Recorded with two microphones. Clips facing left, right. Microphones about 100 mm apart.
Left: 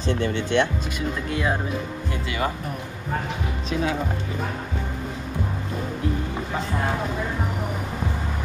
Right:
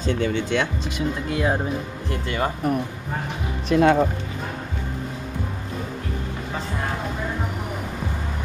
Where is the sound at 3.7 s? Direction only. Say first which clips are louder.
Right 9 dB; 60° right (ahead or behind).